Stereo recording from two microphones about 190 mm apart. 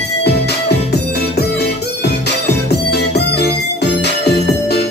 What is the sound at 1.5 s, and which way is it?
Music, 60° left (ahead or behind).